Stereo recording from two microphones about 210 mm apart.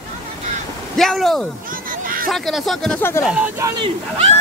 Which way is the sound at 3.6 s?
20° right (ahead or behind).